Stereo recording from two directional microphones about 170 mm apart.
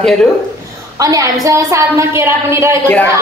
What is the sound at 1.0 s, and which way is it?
A woman's voice, 20° right (ahead or behind).